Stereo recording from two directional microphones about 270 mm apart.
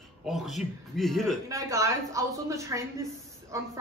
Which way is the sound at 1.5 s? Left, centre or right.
Centre.